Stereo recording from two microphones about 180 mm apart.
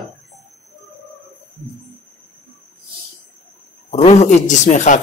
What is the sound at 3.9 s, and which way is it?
Speech, 40° left (ahead or behind).